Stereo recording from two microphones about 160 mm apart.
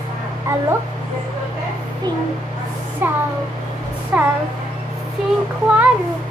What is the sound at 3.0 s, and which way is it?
A woman's voice, 15° right (ahead or behind).